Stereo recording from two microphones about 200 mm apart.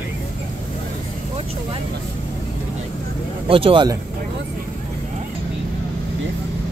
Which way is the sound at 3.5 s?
25° right (ahead or behind).